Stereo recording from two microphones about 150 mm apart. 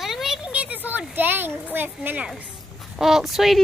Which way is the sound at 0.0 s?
Centre (ahead or behind).